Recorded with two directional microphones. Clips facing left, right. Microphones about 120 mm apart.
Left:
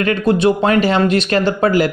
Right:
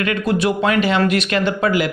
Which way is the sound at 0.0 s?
30° left (ahead or behind).